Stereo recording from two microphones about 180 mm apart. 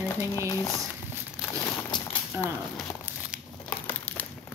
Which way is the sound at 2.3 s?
15° right (ahead or behind).